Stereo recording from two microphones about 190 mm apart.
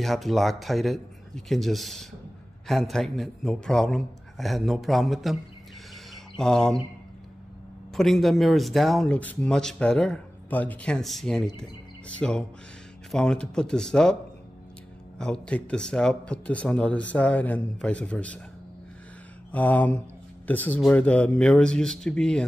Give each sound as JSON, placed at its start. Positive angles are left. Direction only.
{"t": 0.0, "sound": "speech", "side_deg": 0}
{"t": 7.9, "sound": "speech", "side_deg": 0}
{"t": 15.1, "sound": "speech", "side_deg": 5}
{"t": 19.5, "sound": "speech", "side_deg": 10}